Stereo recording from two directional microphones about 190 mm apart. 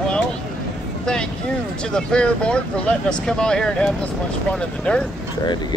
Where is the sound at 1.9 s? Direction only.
5° left (ahead or behind).